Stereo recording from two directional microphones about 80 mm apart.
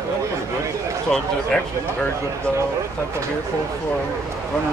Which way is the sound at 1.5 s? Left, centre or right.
Centre.